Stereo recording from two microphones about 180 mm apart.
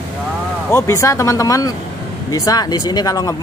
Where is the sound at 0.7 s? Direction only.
15° left (ahead or behind).